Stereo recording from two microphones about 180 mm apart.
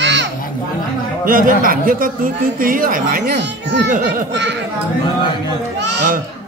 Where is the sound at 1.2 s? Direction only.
50° right (ahead or behind).